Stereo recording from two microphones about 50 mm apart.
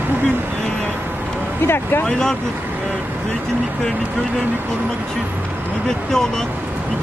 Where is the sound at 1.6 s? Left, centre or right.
Left.